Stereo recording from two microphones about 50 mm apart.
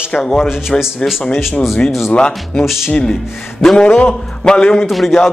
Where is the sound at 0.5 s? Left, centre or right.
Centre.